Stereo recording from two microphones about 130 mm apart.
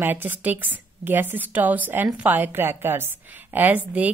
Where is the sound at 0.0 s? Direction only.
15° right (ahead or behind).